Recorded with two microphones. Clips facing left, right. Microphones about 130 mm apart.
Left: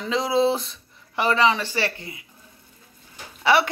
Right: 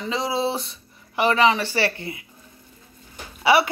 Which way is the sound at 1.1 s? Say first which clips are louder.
Right 2 dB; 10° right (ahead or behind).